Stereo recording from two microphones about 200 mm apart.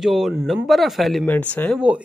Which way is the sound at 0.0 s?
Centre (ahead or behind).